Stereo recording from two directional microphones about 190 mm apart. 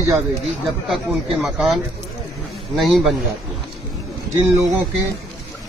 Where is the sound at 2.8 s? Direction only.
Centre (ahead or behind).